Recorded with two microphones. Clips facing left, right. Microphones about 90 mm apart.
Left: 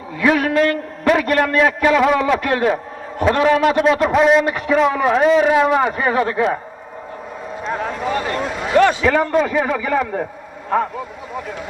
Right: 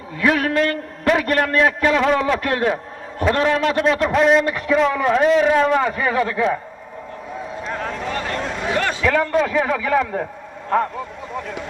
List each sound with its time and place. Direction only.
0.2 s a man's voice: 5° left (ahead or behind)
5.9 s speech: 20° left (ahead or behind)
7.7 s a sound: 5° left (ahead or behind)
10.7 s speech: 5° left (ahead or behind)